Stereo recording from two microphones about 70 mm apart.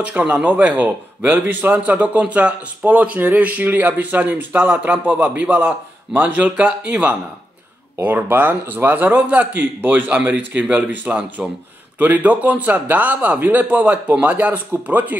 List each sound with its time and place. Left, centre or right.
0.0 s a man's voice: centre